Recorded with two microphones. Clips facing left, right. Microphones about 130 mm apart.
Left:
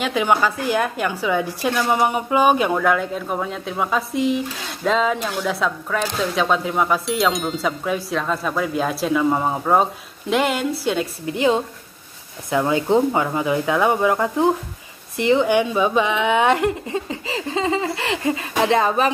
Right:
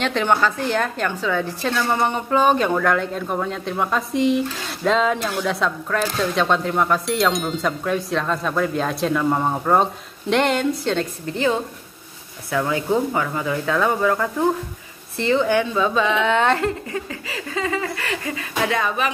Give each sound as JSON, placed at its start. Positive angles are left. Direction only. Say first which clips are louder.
{"t": 0.0, "sound": "a woman's voice", "louder": "even", "side_deg": 10}